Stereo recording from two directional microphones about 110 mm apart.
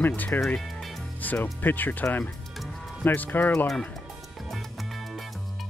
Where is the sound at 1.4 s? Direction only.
15° left (ahead or behind).